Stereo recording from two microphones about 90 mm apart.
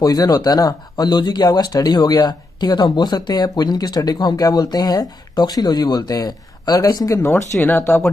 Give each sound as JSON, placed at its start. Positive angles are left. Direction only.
{"t": 0.0, "sound": "speech", "side_deg": 45}
{"t": 7.2, "sound": "speech", "side_deg": 30}